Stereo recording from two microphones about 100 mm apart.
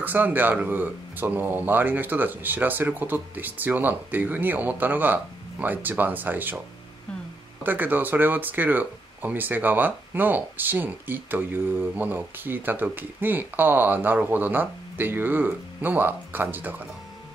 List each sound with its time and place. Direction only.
0.0 s speech: 20° right (ahead or behind)
7.6 s speech: 20° right (ahead or behind)